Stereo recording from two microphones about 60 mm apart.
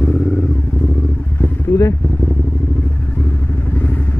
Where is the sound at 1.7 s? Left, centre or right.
Left.